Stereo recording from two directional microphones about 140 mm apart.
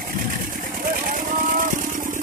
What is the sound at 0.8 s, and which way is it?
Vehicle, 85° right.